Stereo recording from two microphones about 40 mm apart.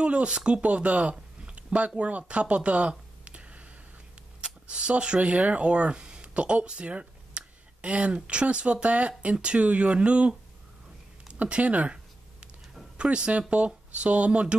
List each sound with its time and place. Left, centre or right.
0.0 s speech: right
1.4 s a sound: right
2.0 s speech: right
11.4 s speech: right